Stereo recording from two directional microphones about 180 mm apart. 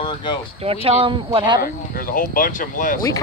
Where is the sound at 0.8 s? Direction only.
30° right (ahead or behind).